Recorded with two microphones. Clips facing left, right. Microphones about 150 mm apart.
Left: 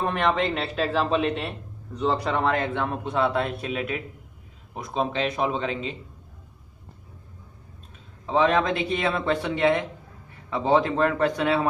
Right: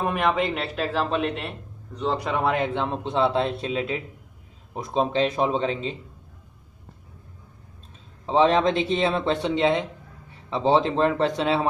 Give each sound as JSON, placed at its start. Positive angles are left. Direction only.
{"t": 0.0, "sound": "a man's voice", "side_deg": -5}
{"t": 2.4, "sound": "speech", "side_deg": -15}
{"t": 8.3, "sound": "speech", "side_deg": -30}